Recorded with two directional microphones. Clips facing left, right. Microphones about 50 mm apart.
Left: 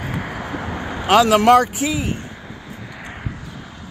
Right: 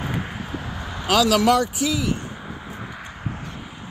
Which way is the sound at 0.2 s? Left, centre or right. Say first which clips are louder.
Left 4 dB; left.